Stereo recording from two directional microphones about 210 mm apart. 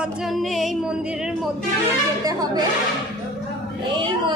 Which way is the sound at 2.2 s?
20° right (ahead or behind).